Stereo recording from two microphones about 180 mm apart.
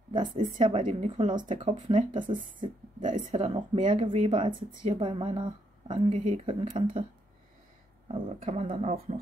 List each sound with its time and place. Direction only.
0.6 s speech: 30° right (ahead or behind)
1.3 s speech: 25° right (ahead or behind)
3.0 s speech: 45° right (ahead or behind)
8.1 s speech: 35° right (ahead or behind)